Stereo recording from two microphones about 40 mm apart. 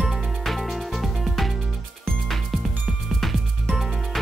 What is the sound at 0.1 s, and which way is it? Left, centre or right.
Music, centre.